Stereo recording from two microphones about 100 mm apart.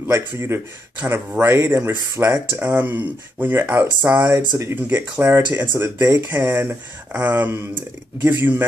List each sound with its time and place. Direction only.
0.0 s speech: 25° right (ahead or behind)